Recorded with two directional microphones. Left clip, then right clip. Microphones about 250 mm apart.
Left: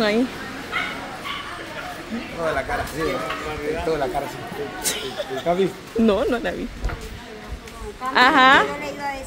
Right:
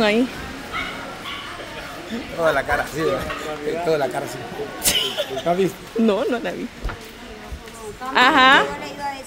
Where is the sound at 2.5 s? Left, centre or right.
Right.